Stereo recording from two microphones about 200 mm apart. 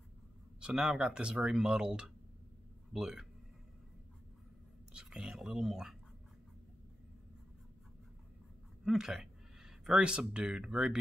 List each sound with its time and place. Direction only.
0.6 s speech: 5° right (ahead or behind)
4.9 s speech: 5° right (ahead or behind)
8.8 s speech: centre (ahead or behind)